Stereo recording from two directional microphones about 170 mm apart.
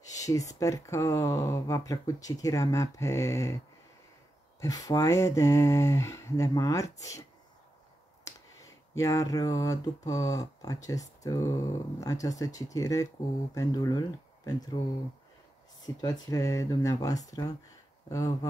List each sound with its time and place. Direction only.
0.0 s speech: 20° left (ahead or behind)
4.6 s speech: 20° left (ahead or behind)
8.9 s speech: 20° left (ahead or behind)
15.8 s speech: 20° left (ahead or behind)